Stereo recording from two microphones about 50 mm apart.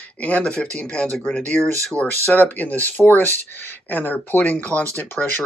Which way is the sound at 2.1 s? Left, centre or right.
Left.